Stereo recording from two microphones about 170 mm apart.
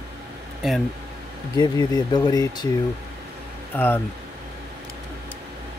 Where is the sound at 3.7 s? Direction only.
10° left (ahead or behind).